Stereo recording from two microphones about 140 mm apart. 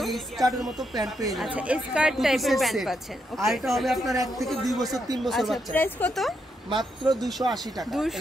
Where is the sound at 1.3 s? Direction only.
10° right (ahead or behind).